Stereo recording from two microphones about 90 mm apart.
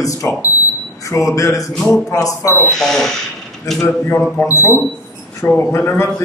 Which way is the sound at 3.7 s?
30° left (ahead or behind).